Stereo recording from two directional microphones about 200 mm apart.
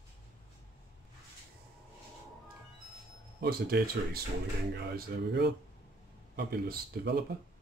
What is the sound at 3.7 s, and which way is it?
Speech, 50° right (ahead or behind).